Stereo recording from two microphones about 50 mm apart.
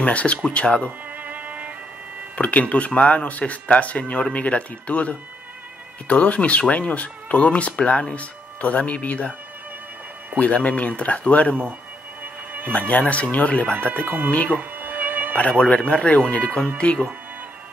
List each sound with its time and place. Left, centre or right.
0.0 s speech: left
0.8 s violin: right
2.3 s speech: left
10.4 s speech: left
12.7 s speech: left
14.0 s speech: right
14.5 s music: right
15.3 s speech: left